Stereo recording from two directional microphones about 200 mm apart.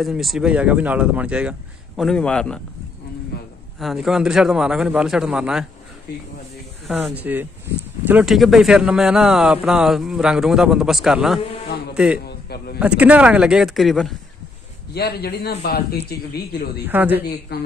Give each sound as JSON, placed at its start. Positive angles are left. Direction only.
{"t": 0.0, "sound": "speech", "side_deg": 0}
{"t": 3.3, "sound": "a sound", "side_deg": 50}
{"t": 3.8, "sound": "speech", "side_deg": 0}
{"t": 6.9, "sound": "a man's voice", "side_deg": -5}
{"t": 12.3, "sound": "a sound", "side_deg": 55}
{"t": 12.7, "sound": "speech", "side_deg": -5}
{"t": 15.0, "sound": "speech", "side_deg": 50}
{"t": 16.8, "sound": "speech", "side_deg": -10}
{"t": 17.5, "sound": "speech", "side_deg": 50}